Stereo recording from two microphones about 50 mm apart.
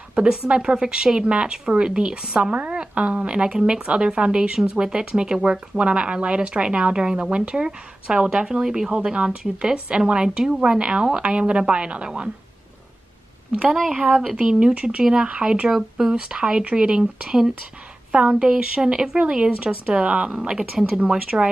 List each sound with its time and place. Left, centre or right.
0.3 s speech: centre
14.3 s speech: centre